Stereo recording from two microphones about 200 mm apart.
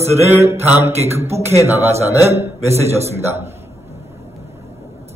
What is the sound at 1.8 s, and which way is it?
Speech, 30° right (ahead or behind).